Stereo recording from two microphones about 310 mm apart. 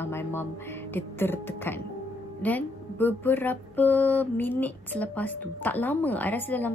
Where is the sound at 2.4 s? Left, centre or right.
Centre.